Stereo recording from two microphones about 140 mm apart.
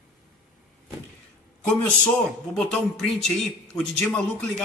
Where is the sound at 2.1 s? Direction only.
5° left (ahead or behind).